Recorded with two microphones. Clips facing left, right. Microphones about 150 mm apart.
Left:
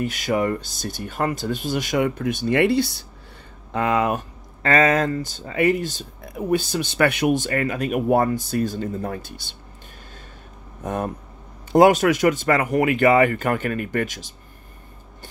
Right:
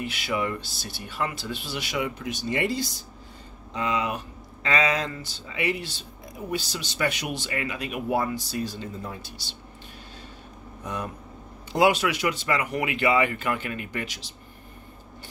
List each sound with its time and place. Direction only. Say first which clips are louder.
0.0 s speech: left 6 dB; 45° left (ahead or behind); by 3.1 s 65° left (ahead or behind)
3.7 s speech: left 7 dB; 55° left (ahead or behind)
10.8 s speech: left 7 dB; 50° left (ahead or behind)